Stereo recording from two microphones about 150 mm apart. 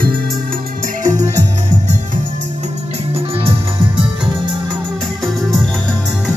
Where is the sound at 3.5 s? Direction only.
35° right (ahead or behind).